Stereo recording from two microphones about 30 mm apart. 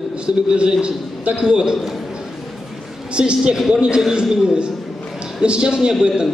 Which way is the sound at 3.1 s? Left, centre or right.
Right.